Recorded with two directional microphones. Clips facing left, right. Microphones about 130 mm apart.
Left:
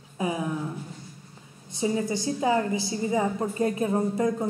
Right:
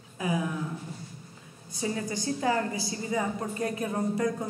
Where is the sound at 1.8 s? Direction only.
20° left (ahead or behind).